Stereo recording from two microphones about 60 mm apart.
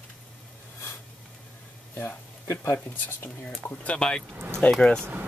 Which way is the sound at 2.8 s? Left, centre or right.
Left.